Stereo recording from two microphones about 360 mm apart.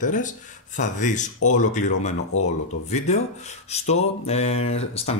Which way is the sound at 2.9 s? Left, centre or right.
Centre.